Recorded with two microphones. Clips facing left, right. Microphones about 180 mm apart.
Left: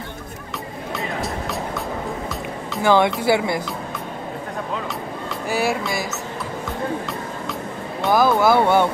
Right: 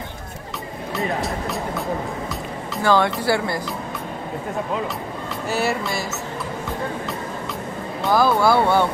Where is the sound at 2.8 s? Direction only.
15° left (ahead or behind).